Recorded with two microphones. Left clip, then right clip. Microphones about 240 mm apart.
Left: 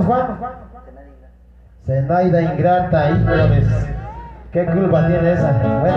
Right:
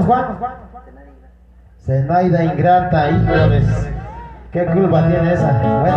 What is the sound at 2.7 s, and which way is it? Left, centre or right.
Speech, right.